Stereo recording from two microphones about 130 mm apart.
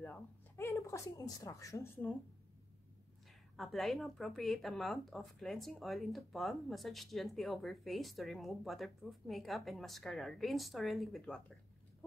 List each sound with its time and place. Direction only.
0.0 s speech: 15° left (ahead or behind)
3.5 s speech: centre (ahead or behind)